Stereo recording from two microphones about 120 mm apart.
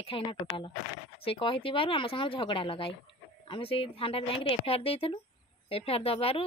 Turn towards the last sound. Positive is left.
turn(degrees=55)  # may be behind; listen again after turning